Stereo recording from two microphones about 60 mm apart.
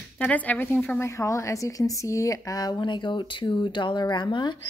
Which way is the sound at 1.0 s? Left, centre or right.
Left.